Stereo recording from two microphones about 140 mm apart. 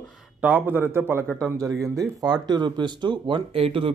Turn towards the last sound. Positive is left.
turn(degrees=-40)  # may be behind; listen again after turning